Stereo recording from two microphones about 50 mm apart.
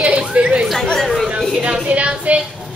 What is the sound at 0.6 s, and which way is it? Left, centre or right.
Speech, centre.